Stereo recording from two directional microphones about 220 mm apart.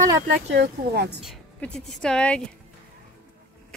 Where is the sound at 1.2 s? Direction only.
5° left (ahead or behind).